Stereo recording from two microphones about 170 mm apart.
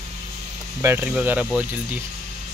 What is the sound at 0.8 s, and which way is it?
Speech, 10° right (ahead or behind).